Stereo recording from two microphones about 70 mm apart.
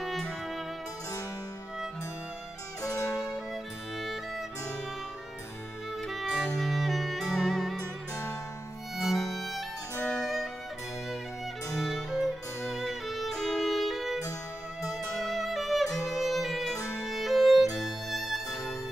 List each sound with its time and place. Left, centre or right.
0.0 s music: centre
2.8 s music: left
6.0 s music: centre
8.9 s music: centre
10.0 s violin: centre
12.8 s music: centre